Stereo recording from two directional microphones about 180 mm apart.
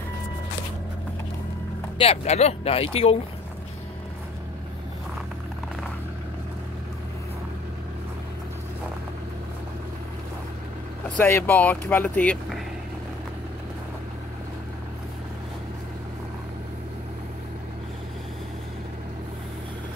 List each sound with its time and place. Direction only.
2.0 s speech: 35° left (ahead or behind)
11.1 s speech: 10° left (ahead or behind)